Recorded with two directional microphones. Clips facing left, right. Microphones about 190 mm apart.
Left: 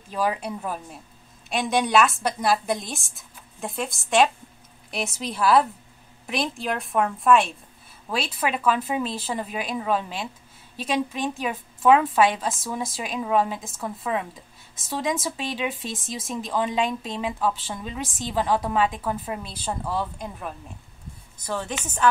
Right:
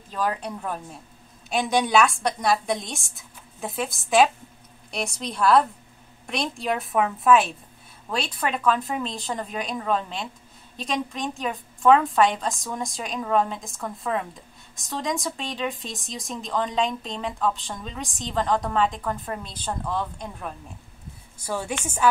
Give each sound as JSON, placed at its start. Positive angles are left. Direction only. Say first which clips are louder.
{"t": 0.1, "sound": "a woman's voice", "louder": "left 2 dB", "side_deg": 10}
{"t": 21.4, "sound": "a woman's voice", "louder": "right 1 dB", "side_deg": -10}